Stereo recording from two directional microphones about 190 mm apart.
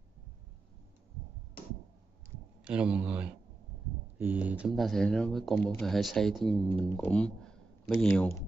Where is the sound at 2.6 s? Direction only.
5° right (ahead or behind).